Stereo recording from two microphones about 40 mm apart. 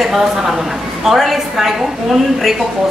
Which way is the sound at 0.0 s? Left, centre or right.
Centre.